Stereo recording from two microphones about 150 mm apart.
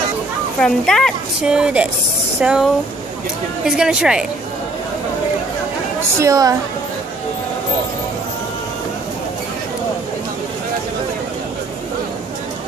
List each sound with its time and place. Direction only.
0.6 s a woman's voice: 5° left (ahead or behind)
6.1 s a woman's voice: 20° right (ahead or behind)